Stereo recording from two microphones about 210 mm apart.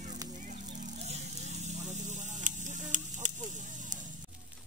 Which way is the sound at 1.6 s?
35° right (ahead or behind).